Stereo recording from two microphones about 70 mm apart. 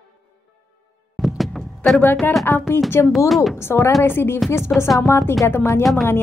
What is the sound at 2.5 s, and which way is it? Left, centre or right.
Speech, left.